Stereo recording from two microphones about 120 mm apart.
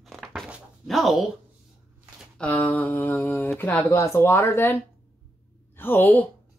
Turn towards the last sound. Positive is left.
turn(degrees=15)  # may be behind; listen again after turning